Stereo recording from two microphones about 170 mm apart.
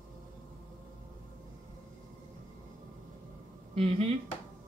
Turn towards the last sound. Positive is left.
turn(degrees=-35)  # may be behind; listen again after turning